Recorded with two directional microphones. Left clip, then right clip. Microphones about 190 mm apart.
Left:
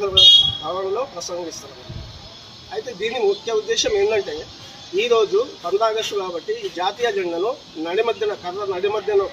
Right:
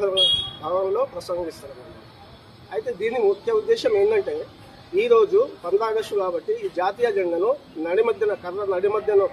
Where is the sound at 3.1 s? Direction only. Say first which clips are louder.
Left 1 dB; 10° left (ahead or behind).